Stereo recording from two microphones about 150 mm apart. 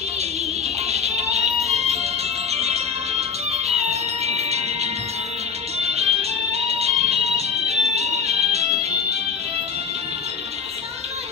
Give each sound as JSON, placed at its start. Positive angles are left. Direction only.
{"t": 0.9, "sound": "music", "side_deg": -45}
{"t": 5.8, "sound": "music", "side_deg": -45}